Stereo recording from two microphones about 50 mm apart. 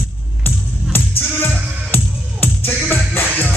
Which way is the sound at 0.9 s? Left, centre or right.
Left.